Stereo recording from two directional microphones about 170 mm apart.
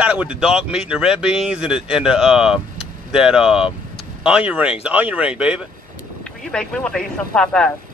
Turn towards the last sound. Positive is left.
turn(degrees=5)  # may be behind; listen again after turning